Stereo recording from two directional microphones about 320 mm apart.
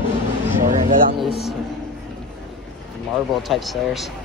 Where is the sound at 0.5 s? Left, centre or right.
Right.